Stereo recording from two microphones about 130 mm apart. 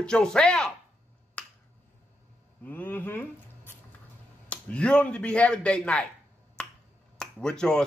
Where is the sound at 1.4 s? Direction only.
10° left (ahead or behind).